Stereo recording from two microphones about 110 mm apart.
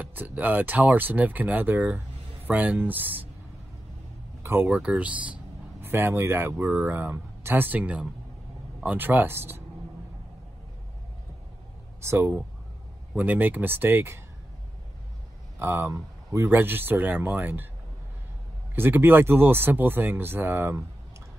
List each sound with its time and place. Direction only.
0.0 s speech: 15° right (ahead or behind)
4.4 s speech: 20° right (ahead or behind)
4.6 s a man's voice: 10° right (ahead or behind)
12.0 s speech: 25° right (ahead or behind)
15.6 s speech: 20° right (ahead or behind)
18.8 s speech: 20° right (ahead or behind)